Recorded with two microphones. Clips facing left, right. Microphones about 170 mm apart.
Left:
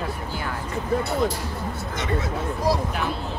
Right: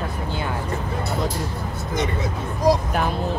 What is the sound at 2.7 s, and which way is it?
Speech, 15° right (ahead or behind).